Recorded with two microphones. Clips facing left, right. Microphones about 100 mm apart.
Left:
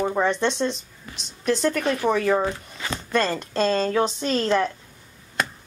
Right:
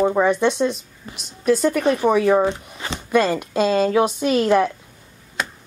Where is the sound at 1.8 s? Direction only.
15° right (ahead or behind).